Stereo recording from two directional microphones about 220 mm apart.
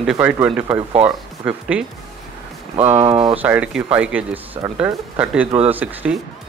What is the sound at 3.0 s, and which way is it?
Speech, 25° right (ahead or behind).